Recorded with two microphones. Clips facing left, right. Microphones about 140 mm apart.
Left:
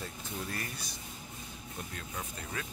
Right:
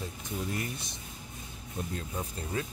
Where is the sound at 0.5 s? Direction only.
20° right (ahead or behind).